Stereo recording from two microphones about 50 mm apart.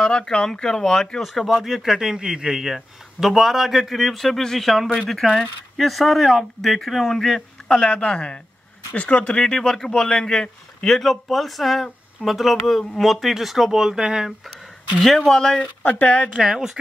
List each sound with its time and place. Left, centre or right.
0.0 s speech: centre
7.6 s speech: centre
9.4 s a man's voice: centre
11.0 s speech: centre
15.2 s a man's voice: centre
15.6 s speech: left
16.4 s speech: centre